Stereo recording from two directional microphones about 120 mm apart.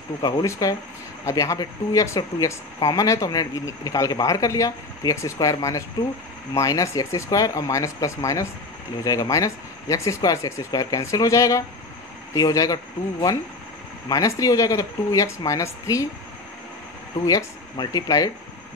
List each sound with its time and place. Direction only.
0.2 s speech: 35° left (ahead or behind)
17.3 s speech: 30° left (ahead or behind)